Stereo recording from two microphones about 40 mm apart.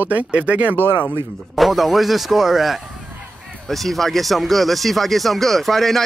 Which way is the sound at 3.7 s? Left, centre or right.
Centre.